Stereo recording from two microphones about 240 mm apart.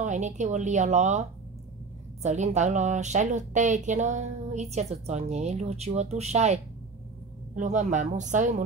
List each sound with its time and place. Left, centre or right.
0.0 s speech: right
2.2 s speech: right